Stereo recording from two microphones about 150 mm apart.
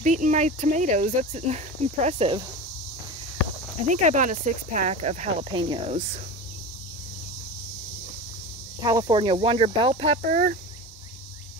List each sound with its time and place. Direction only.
0.0 s speech: 55° right (ahead or behind); by 2.4 s 40° right (ahead or behind)
3.8 s speech: 55° right (ahead or behind)
5.5 s speech: 35° right (ahead or behind)
8.8 s speech: 25° right (ahead or behind); by 10.4 s 45° right (ahead or behind)